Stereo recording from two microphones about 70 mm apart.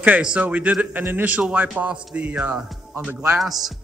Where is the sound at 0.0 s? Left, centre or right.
Centre.